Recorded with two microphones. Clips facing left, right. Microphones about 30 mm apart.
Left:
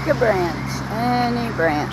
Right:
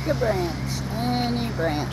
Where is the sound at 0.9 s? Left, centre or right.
Centre.